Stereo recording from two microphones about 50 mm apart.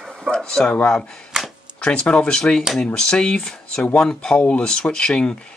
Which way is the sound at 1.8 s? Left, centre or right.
Left.